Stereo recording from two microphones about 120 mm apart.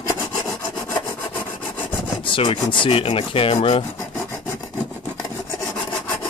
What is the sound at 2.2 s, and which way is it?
Speech, 45° left (ahead or behind).